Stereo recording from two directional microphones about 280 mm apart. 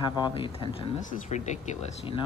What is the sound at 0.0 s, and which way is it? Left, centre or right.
Speech, centre.